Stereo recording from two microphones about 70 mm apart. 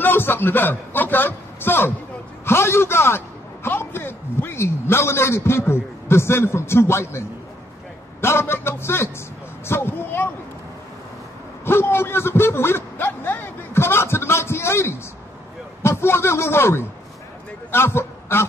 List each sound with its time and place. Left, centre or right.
0.0 s a man's voice: left
9.7 s a sound: left
11.6 s a man's voice: left